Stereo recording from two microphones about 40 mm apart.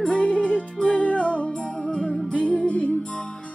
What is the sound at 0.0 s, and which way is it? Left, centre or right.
Music, left.